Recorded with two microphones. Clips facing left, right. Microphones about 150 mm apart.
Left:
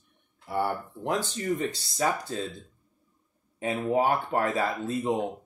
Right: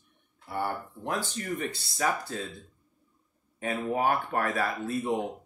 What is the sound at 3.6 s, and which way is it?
Speech, 20° left (ahead or behind).